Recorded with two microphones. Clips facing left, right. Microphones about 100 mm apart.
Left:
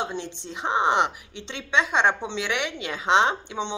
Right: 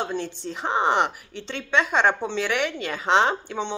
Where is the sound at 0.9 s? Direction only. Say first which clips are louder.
Even; 50° right (ahead or behind).